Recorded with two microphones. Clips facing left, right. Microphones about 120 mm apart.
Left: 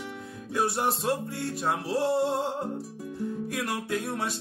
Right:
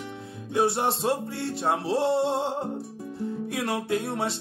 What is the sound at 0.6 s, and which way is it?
Music, 25° right (ahead or behind).